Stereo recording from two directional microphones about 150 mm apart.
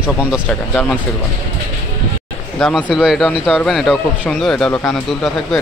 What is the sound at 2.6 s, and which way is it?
Speech, centre (ahead or behind).